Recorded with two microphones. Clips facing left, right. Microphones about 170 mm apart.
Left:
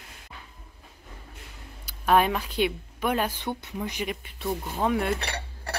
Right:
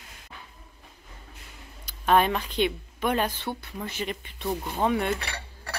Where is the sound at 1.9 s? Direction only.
5° left (ahead or behind).